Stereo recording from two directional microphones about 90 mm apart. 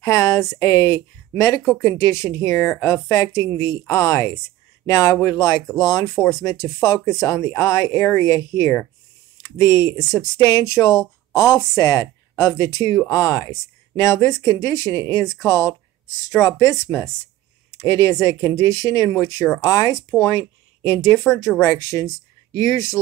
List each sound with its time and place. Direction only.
0.0 s speech: 35° left (ahead or behind)